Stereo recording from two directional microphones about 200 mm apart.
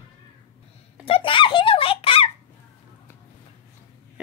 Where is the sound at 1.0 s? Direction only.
30° left (ahead or behind).